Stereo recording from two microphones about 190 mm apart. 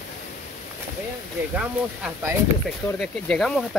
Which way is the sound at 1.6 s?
5° right (ahead or behind).